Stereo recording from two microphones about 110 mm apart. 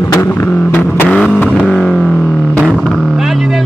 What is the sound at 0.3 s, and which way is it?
Vehicle, 15° left (ahead or behind).